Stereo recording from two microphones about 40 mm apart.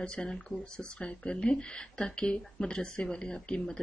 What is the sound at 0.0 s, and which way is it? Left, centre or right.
Speech, left.